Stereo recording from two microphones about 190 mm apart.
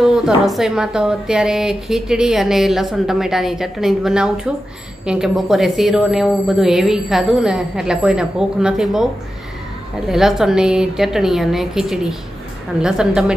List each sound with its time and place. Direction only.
0.0 s a woman's voice: centre (ahead or behind)